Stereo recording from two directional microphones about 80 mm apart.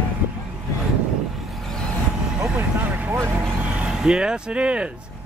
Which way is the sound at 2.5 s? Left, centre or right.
Right.